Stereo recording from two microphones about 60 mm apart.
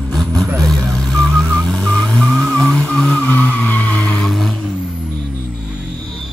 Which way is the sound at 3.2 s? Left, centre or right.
Left.